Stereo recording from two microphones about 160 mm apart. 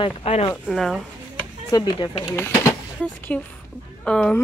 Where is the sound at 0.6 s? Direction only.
Centre (ahead or behind).